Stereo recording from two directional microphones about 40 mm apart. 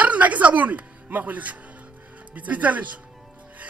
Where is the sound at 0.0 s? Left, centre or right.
Right.